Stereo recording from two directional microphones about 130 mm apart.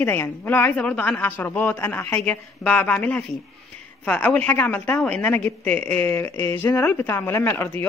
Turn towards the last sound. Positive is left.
turn(degrees=20)  # may be behind; listen again after turning